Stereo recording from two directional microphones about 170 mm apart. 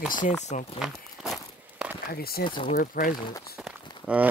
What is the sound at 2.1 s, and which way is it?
Speech, 65° left (ahead or behind).